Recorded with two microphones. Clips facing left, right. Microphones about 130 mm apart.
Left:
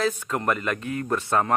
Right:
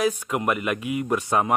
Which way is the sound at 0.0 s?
15° right (ahead or behind).